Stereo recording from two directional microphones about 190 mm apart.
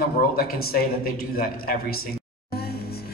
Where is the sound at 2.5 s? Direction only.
55° left (ahead or behind).